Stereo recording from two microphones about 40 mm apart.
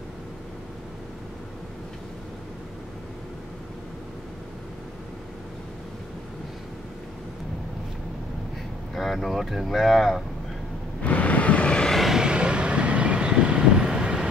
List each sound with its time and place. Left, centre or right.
8.9 s speech: centre
11.0 s vehicle: left
12.1 s vehicle: right